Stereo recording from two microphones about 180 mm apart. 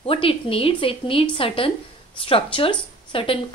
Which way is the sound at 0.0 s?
30° left (ahead or behind).